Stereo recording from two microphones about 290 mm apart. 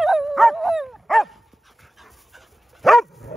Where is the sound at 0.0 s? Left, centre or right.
Centre.